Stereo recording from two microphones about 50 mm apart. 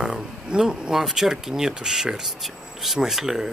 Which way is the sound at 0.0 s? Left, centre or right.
Centre.